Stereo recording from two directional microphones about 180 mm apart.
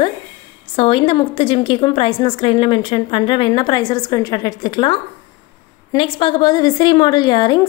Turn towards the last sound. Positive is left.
turn(degrees=25)  # may be behind; listen again after turning